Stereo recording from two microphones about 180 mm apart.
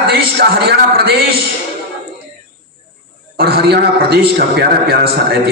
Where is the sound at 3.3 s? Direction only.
60° right (ahead or behind).